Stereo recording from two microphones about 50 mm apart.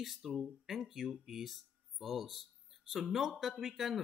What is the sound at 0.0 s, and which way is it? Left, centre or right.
Speech, centre.